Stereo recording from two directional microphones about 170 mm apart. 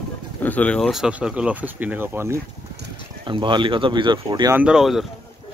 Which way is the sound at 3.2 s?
30° right (ahead or behind).